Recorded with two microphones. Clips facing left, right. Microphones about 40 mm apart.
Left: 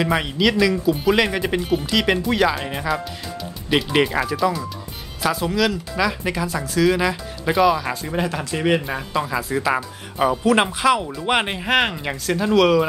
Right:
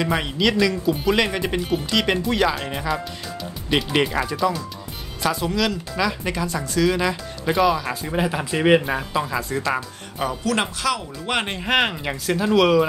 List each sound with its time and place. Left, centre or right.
0.0 s speech: centre